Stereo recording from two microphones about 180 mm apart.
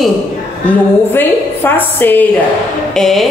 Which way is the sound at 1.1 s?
10° left (ahead or behind).